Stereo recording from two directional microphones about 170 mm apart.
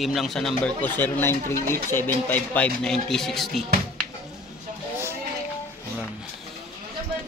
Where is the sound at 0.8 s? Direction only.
15° left (ahead or behind).